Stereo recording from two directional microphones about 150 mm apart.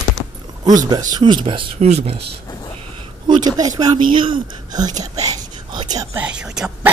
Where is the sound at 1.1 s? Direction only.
30° right (ahead or behind).